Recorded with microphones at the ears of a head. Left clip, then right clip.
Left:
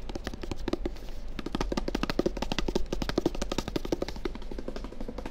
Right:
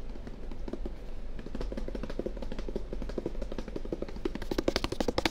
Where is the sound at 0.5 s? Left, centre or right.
Left.